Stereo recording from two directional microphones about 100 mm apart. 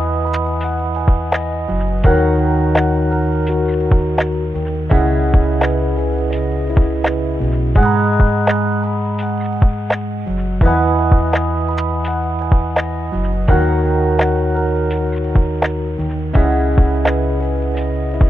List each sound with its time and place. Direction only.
2.0 s music: centre (ahead or behind)
7.7 s music: centre (ahead or behind)
10.6 s music: centre (ahead or behind)
10.9 s music: 10° right (ahead or behind)
13.5 s music: centre (ahead or behind)
16.3 s music: centre (ahead or behind)